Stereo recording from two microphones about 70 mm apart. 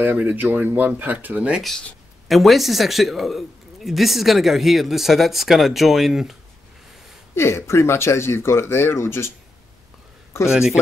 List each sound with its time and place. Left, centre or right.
0.0 s speech: right
2.2 s speech: centre
7.3 s speech: left
10.5 s speech: centre